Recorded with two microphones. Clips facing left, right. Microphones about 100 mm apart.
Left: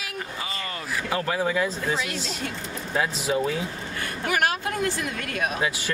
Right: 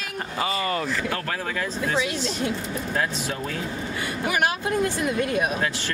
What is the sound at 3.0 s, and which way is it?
Speech, 10° left (ahead or behind).